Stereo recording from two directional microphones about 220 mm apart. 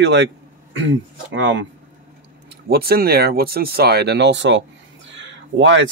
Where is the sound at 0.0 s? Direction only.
50° right (ahead or behind).